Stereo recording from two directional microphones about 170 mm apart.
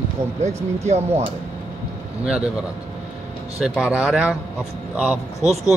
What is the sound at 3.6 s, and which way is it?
Speech, 5° right (ahead or behind).